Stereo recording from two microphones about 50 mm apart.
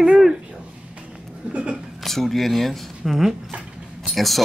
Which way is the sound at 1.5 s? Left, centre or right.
Right.